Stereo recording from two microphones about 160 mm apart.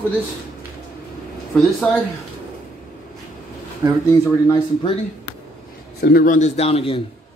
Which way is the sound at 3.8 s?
20° right (ahead or behind).